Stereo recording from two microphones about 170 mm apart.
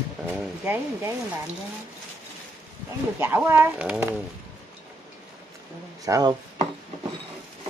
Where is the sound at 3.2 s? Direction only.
10° right (ahead or behind).